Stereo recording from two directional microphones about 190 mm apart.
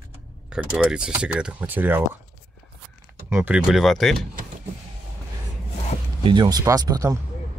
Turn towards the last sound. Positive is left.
turn(degrees=-20)  # may be behind; listen again after turning